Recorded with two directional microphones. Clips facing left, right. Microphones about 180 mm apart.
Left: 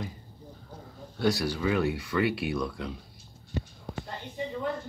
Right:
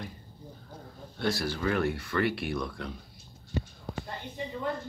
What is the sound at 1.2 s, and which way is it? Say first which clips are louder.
Speech: left 3 dB; 10° left (ahead or behind).